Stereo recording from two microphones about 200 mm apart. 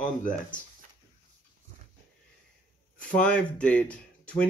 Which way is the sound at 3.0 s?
5° left (ahead or behind).